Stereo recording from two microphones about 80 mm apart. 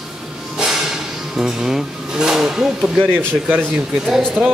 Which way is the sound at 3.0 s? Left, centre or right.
Right.